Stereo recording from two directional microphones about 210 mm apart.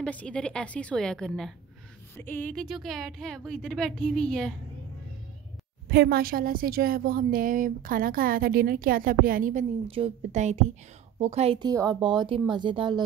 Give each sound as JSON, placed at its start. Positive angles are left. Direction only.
{"t": 0.0, "sound": "a woman's voice", "side_deg": 5}
{"t": 5.9, "sound": "a woman's voice", "side_deg": -50}